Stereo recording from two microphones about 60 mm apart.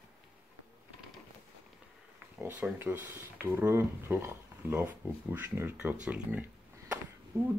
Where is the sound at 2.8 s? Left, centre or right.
Right.